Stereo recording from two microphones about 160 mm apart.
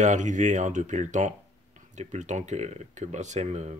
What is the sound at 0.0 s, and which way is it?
Speech, 50° right (ahead or behind).